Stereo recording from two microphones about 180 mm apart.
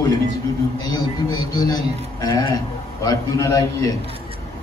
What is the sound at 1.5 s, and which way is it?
A man's voice, 20° left (ahead or behind).